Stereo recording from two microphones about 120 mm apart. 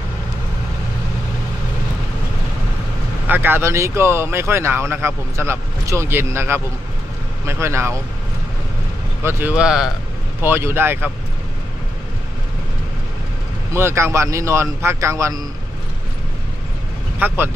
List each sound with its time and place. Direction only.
3.3 s speech: 15° right (ahead or behind)
9.2 s speech: 20° right (ahead or behind)
9.6 s speech: 5° right (ahead or behind)
10.4 s speech: 20° right (ahead or behind)
13.7 s speech: 20° right (ahead or behind)
17.2 s speech: 15° right (ahead or behind)